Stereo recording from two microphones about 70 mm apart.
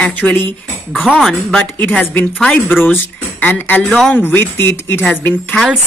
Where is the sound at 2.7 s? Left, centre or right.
Left.